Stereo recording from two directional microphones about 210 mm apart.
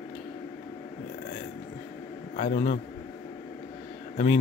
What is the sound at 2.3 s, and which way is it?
Speech, 40° left (ahead or behind).